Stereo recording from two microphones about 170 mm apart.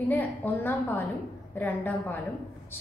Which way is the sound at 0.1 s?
10° left (ahead or behind).